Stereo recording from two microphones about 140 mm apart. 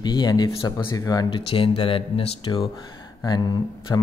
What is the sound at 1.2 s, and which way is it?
Speech, 40° left (ahead or behind).